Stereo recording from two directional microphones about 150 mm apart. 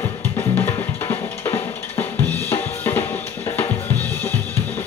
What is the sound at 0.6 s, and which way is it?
Drum kit, 15° left (ahead or behind).